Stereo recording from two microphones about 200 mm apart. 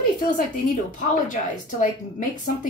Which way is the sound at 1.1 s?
40° left (ahead or behind).